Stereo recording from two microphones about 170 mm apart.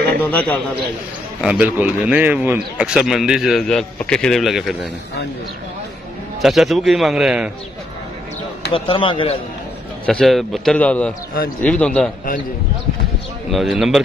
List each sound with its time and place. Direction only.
0.2 s a man's voice: 10° left (ahead or behind)
1.4 s a man's voice: 5° right (ahead or behind)
6.4 s a man's voice: centre (ahead or behind)
8.7 s a man's voice: 30° left (ahead or behind)
10.0 s a man's voice: 5° left (ahead or behind)
13.5 s a man's voice: centre (ahead or behind)